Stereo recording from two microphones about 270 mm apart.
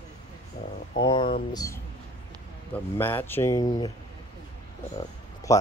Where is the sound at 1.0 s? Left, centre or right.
Centre.